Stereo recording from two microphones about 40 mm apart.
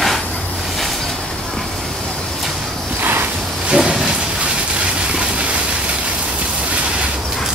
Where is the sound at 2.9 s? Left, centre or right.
Right.